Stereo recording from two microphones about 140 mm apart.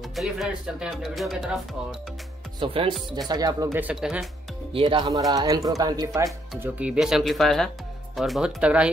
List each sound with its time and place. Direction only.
0.1 s speech: centre (ahead or behind)
2.6 s music: 40° right (ahead or behind)
3.3 s speech: 30° right (ahead or behind)
3.9 s speech: 5° right (ahead or behind)
4.7 s speech: 35° right (ahead or behind)
6.6 s speech: 10° right (ahead or behind)